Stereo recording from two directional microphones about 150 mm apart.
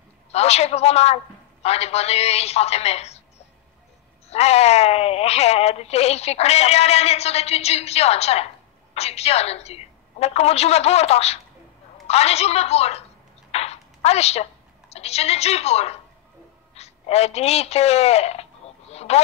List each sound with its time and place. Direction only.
0.3 s a woman's voice: 45° left (ahead or behind)
4.3 s a woman's voice: 45° left (ahead or behind)
13.5 s a sound: 45° left (ahead or behind)
16.7 s speech: 45° left (ahead or behind)